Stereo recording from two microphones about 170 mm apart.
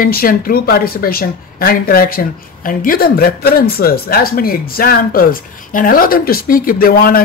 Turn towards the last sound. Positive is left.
turn(degrees=60)  # may be behind; listen again after turning